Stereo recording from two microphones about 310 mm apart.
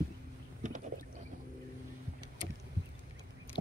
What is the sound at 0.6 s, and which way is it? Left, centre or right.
Boat, right.